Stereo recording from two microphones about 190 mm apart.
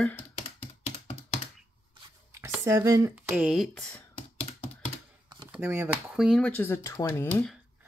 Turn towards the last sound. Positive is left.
turn(degrees=10)  # may be behind; listen again after turning